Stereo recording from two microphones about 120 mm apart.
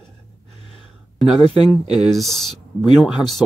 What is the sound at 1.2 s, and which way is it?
Speech, centre (ahead or behind).